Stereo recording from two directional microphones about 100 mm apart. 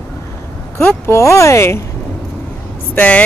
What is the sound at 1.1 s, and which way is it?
Speech, 30° left (ahead or behind).